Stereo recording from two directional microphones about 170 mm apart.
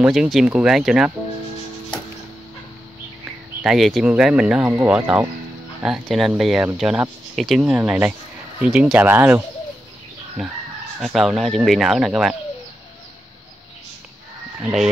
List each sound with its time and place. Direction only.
0.0 s speech: 5° right (ahead or behind)
3.6 s speech: centre (ahead or behind)
14.6 s speech: 5° right (ahead or behind)